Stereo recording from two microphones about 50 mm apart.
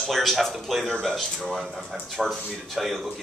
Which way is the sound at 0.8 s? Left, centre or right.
Centre.